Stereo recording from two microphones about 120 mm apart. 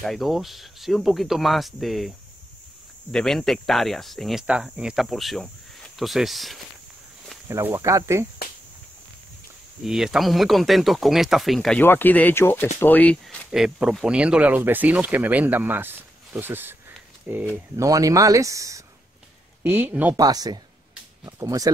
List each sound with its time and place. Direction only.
0.0 s speech: centre (ahead or behind)
7.4 s speech: 20° right (ahead or behind)
9.8 s speech: 5° right (ahead or behind)
11.8 s speech: 15° left (ahead or behind)
13.5 s speech: 5° right (ahead or behind)
17.7 s speech: 30° right (ahead or behind)
19.6 s speech: 15° right (ahead or behind)
20.2 s speech: 30° right (ahead or behind)